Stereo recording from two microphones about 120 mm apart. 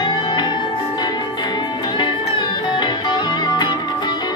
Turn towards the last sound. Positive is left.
turn(degrees=40)  # may be behind; listen again after turning